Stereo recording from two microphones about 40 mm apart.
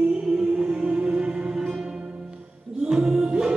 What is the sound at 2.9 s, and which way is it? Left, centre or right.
Music, right.